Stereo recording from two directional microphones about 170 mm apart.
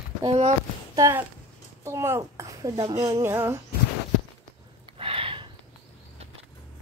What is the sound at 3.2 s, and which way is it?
Speech, 15° right (ahead or behind).